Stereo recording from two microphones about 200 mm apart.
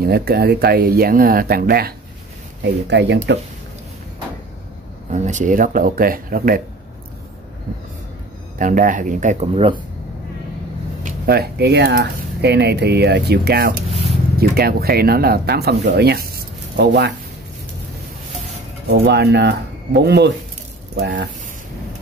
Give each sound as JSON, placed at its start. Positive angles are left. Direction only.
{"t": 0.0, "sound": "speech", "side_deg": -50}
{"t": 5.1, "sound": "speech", "side_deg": -35}
{"t": 8.5, "sound": "speech", "side_deg": -40}
{"t": 11.1, "sound": "speech", "side_deg": -50}
{"t": 18.9, "sound": "speech", "side_deg": -55}